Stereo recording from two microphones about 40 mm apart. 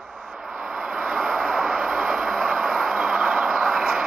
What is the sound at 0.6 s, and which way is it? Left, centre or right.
Vehicle, centre.